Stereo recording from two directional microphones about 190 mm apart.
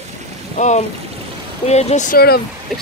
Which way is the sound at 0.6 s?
40° left (ahead or behind).